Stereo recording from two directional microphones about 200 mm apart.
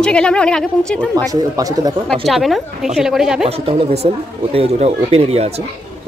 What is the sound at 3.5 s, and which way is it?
Speech, 30° right (ahead or behind).